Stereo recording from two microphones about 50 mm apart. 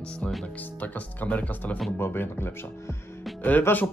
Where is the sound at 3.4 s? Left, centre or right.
Left.